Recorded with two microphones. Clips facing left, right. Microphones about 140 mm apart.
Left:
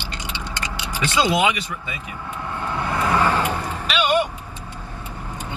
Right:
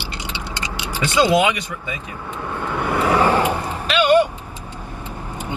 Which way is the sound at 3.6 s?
15° left (ahead or behind).